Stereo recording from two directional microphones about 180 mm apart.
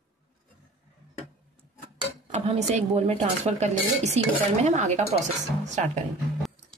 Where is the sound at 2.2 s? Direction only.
30° right (ahead or behind).